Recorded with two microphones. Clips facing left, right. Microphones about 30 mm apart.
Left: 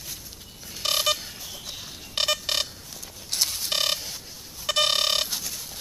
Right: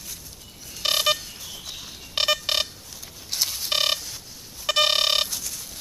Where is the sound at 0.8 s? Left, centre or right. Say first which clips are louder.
Right 2 dB; centre.